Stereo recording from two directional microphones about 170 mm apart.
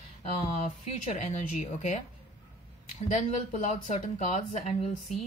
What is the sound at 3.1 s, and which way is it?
Speech, 45° left (ahead or behind).